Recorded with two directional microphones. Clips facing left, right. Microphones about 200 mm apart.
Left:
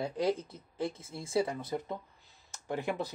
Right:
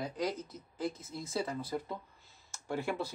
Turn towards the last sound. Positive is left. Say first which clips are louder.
# left 1 dB
turn(degrees=15)  # may be behind; listen again after turning